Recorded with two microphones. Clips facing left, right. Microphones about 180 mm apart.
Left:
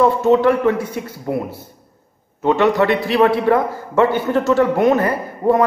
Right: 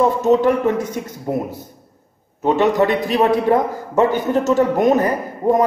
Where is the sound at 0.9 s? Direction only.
15° right (ahead or behind).